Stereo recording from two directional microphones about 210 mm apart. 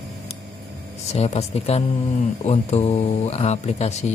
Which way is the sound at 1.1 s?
30° left (ahead or behind).